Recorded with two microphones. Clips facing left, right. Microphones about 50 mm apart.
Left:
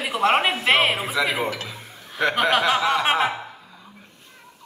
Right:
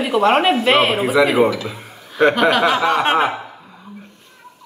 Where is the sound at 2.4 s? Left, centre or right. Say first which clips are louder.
Right 5 dB; centre.